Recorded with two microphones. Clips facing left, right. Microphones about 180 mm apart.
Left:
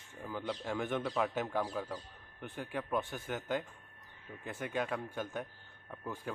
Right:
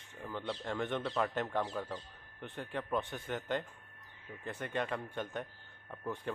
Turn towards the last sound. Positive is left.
turn(degrees=0)  # may be behind; listen again after turning